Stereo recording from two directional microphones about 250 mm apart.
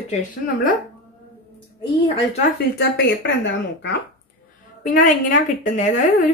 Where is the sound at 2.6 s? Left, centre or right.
Left.